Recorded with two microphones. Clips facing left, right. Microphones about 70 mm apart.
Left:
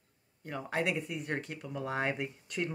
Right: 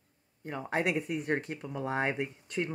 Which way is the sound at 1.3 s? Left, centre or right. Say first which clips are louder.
Right 5 dB; right.